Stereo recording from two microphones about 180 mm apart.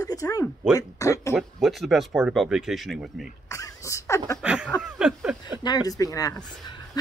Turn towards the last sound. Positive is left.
turn(degrees=20)  # may be behind; listen again after turning